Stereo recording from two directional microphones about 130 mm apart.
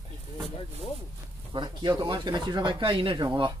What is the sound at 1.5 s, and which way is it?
Speech, 35° right (ahead or behind).